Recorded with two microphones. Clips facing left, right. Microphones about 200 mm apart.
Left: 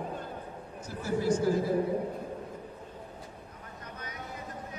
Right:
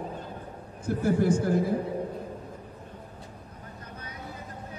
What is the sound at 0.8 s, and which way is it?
Speech, 55° right (ahead or behind).